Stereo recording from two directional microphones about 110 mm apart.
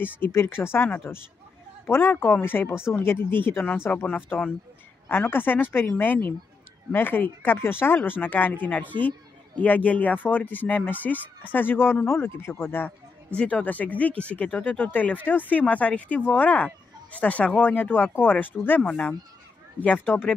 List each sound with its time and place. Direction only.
0.0 s speech: 20° left (ahead or behind)